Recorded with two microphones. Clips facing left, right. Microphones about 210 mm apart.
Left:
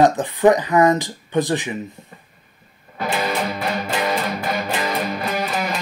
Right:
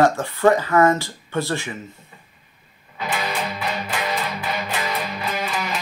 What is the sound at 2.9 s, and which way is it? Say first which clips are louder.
Music: left 4 dB; 45° left (ahead or behind).